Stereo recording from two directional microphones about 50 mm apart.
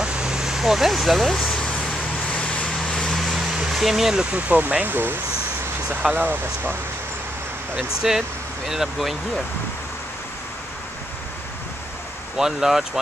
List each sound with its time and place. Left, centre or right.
0.0 s vehicle: centre
2.3 s vehicle: left
3.1 s vehicle: centre
3.5 s a sound: centre
4.2 s speech: right
4.9 s speech: right
7.7 s speech: centre
12.4 s speech: centre